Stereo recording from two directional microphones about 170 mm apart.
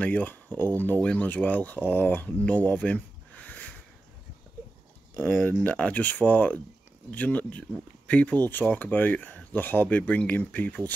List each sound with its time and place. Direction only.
0.0 s speech: 10° left (ahead or behind)
2.4 s a sound: 10° left (ahead or behind)
5.2 s speech: 10° left (ahead or behind)